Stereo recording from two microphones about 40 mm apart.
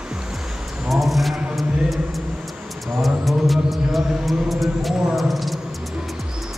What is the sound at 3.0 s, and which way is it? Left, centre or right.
Music, centre.